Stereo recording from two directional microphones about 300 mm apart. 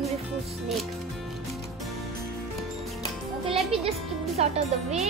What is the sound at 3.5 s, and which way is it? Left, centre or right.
A child's voice, centre.